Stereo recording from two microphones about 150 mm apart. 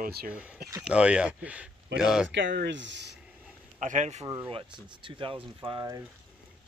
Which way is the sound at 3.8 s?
55° right (ahead or behind).